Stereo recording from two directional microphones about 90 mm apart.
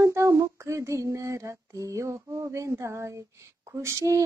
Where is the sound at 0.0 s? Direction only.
35° right (ahead or behind).